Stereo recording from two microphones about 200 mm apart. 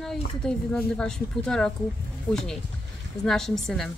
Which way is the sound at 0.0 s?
5° left (ahead or behind).